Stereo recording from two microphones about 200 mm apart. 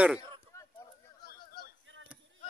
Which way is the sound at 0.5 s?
15° left (ahead or behind).